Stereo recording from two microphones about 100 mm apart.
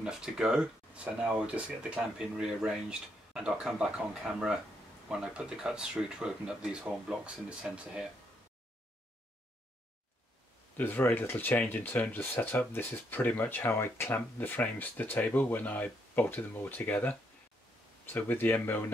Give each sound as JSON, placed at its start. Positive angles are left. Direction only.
{"t": 0.0, "sound": "speech", "side_deg": -5}
{"t": 10.8, "sound": "speech", "side_deg": 20}